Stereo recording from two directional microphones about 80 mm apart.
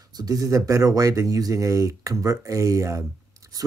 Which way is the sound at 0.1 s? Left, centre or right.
Right.